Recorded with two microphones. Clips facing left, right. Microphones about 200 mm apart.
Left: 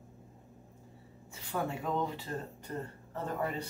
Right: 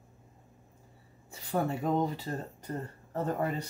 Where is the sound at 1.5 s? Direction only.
40° right (ahead or behind).